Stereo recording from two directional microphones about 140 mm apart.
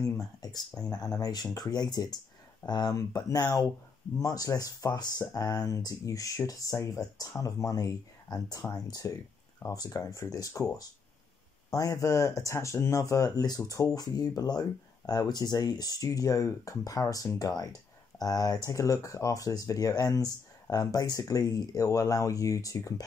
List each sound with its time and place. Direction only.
0.0 s speech: 25° left (ahead or behind)